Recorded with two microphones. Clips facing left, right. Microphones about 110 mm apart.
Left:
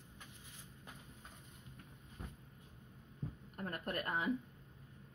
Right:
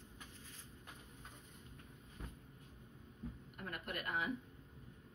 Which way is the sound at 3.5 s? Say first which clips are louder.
Left 5 dB; 35° left (ahead or behind).